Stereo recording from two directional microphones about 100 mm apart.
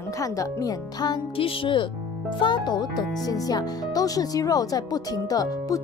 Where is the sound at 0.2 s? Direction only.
35° left (ahead or behind).